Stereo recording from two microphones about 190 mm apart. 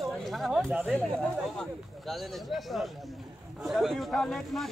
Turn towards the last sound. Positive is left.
turn(degrees=5)  # may be behind; listen again after turning